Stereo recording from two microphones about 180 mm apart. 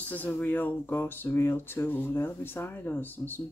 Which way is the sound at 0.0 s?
10° left (ahead or behind).